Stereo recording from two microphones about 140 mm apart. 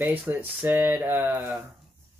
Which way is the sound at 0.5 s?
10° right (ahead or behind).